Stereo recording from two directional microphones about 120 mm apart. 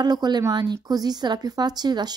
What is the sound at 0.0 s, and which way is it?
A woman's voice, 35° right (ahead or behind).